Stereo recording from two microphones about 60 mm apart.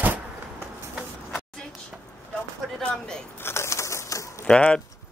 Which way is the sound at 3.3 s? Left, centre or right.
Left.